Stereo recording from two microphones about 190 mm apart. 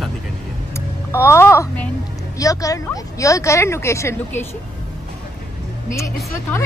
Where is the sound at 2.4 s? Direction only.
15° left (ahead or behind).